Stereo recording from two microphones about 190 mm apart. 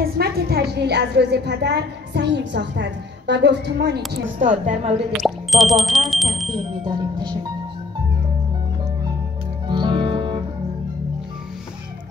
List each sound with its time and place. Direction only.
0.0 s a woman's voice: 55° right (ahead or behind); by 5.0 s 35° right (ahead or behind)
5.1 s speech: centre (ahead or behind)
6.8 s speech: 25° right (ahead or behind)
9.7 s music: 25° right (ahead or behind)